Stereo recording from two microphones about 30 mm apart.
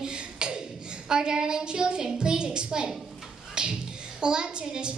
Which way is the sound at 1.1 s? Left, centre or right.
Right.